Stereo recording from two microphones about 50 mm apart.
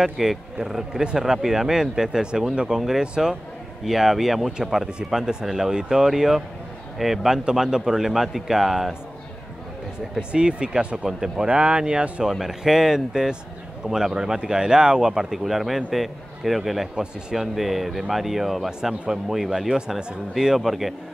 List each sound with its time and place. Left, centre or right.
0.0 s speech: centre
10.3 s speech: centre
16.9 s speech: centre